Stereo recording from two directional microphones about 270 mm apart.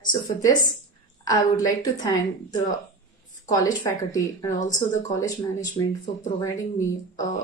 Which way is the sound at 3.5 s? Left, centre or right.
Centre.